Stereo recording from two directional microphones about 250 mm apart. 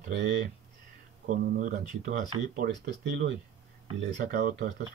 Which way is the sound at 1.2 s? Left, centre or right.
Right.